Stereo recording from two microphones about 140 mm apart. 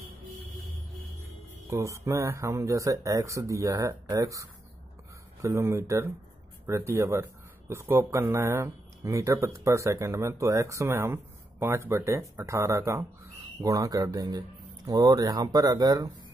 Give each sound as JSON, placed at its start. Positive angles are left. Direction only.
{"t": 1.7, "sound": "speech", "side_deg": -20}